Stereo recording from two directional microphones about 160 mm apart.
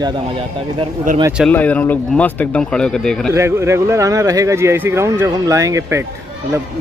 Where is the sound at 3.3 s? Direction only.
15° right (ahead or behind).